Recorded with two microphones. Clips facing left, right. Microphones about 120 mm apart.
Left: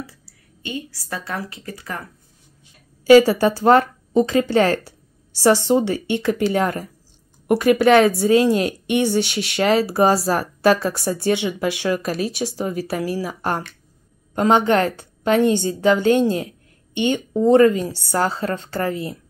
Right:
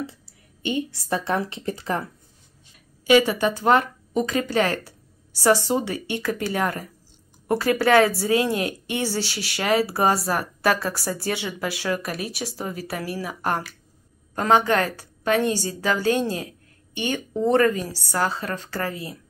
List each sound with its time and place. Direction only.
0.6 s a woman's voice: 25° right (ahead or behind)
3.1 s a woman's voice: 35° left (ahead or behind)